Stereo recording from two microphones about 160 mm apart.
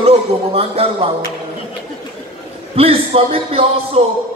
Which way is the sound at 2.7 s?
35° right (ahead or behind).